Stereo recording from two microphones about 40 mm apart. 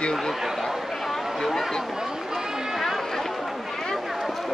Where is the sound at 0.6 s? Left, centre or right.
Centre.